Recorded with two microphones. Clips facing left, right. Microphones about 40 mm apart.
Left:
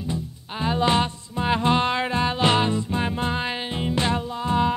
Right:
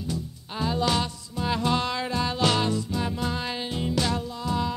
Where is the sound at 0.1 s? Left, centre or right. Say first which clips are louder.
Left 2 dB; left.